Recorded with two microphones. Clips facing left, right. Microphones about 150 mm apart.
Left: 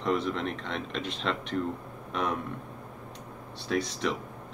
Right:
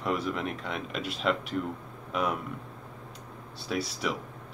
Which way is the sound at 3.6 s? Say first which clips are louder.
Left 2 dB; 5° right (ahead or behind).